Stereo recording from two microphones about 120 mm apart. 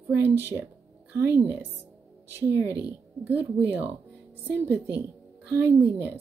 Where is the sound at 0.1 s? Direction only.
20° right (ahead or behind).